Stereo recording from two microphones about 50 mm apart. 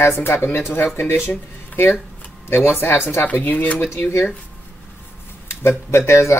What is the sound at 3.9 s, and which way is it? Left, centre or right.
Speech, left.